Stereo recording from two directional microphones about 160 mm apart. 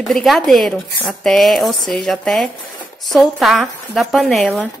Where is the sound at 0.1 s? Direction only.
Centre (ahead or behind).